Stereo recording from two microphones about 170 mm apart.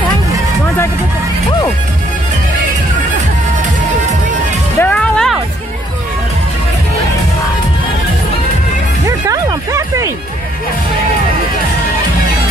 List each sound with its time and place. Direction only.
4.7 s music: 10° left (ahead or behind)
9.0 s music: 20° right (ahead or behind)